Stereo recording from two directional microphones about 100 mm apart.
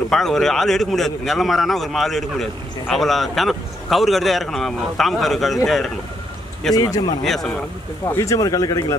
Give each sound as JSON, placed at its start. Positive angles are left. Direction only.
{"t": 0.1, "sound": "speech", "side_deg": 5}
{"t": 6.7, "sound": "speech", "side_deg": 40}
{"t": 7.2, "sound": "speech", "side_deg": 5}
{"t": 8.2, "sound": "speech", "side_deg": 35}